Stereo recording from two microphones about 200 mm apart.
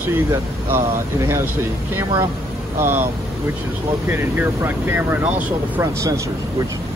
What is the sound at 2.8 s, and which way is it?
Speech, 10° right (ahead or behind).